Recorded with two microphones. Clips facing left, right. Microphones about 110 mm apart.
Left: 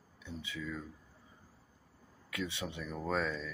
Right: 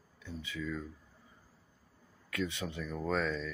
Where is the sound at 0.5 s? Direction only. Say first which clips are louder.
Right 3 dB; 5° left (ahead or behind).